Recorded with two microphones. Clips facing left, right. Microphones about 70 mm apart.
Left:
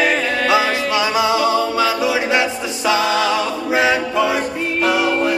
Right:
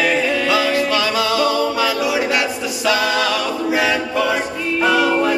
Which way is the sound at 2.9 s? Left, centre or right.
Left.